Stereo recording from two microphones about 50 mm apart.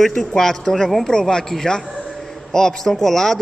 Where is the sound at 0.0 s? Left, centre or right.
Centre.